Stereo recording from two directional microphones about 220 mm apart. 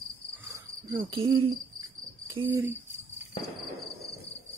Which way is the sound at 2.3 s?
15° right (ahead or behind).